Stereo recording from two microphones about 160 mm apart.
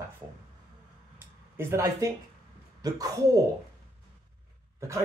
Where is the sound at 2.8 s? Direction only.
20° right (ahead or behind).